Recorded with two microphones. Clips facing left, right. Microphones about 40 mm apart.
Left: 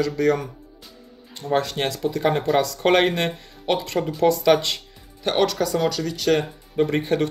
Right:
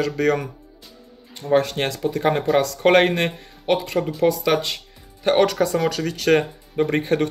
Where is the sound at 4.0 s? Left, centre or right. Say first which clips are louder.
Right 1 dB; centre.